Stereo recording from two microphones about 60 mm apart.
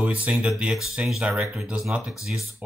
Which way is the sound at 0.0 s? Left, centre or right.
Right.